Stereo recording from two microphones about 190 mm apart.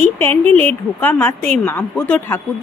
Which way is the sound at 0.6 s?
10° left (ahead or behind).